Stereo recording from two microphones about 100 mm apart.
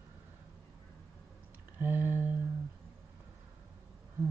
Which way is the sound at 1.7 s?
20° right (ahead or behind).